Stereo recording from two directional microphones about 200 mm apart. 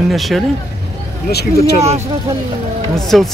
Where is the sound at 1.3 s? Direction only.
55° left (ahead or behind).